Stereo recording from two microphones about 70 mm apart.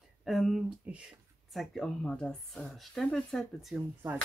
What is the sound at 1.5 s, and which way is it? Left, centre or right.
Speech, centre.